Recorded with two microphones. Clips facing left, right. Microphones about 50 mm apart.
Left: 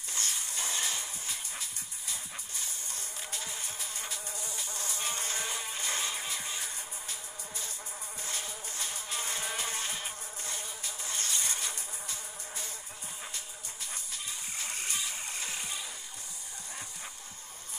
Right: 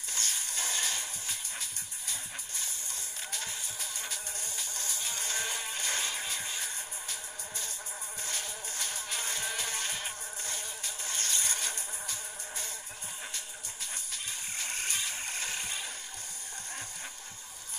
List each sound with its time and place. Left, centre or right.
0.1 s music: left
0.5 s a sound: left
1.6 s music: right
3.6 s insect: left
4.1 s insect: right
4.6 s music: left
8.2 s music: right
8.9 s music: left
10.8 s insect: right
14.1 s vehicle: right